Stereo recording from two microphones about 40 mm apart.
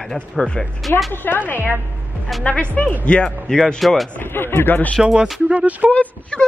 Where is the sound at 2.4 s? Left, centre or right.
Left.